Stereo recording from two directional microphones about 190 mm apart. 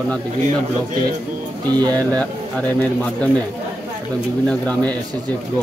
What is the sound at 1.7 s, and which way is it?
Speech, 20° right (ahead or behind).